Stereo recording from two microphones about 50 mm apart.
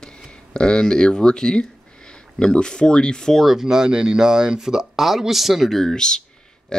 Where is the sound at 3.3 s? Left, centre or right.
Centre.